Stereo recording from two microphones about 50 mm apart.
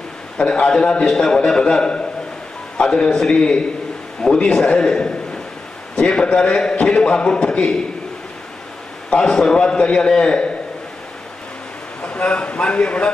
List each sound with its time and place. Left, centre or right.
0.4 s a man's voice: centre
9.1 s a man's voice: centre
12.0 s speech: left